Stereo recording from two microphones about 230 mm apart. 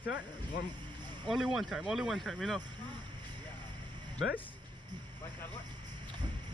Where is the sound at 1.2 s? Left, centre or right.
Centre.